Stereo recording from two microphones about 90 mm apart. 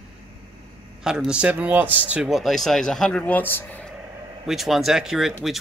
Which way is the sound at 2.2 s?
Centre (ahead or behind).